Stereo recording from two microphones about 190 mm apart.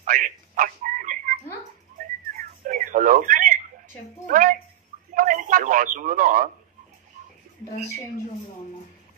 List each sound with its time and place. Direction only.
0.0 s a sound: 45° right (ahead or behind)
2.3 s telephone: 45° right (ahead or behind)
4.3 s a woman's voice: 45° right (ahead or behind)